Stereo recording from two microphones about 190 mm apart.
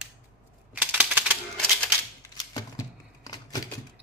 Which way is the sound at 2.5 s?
20° left (ahead or behind).